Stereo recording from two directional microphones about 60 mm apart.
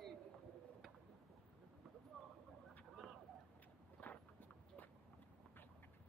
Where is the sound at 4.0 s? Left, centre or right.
Left.